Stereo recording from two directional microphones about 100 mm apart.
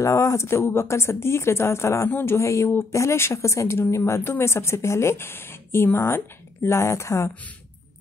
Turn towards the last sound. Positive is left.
turn(degrees=25)  # may be behind; listen again after turning